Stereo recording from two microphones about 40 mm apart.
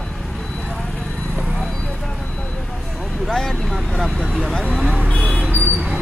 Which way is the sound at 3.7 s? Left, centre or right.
Centre.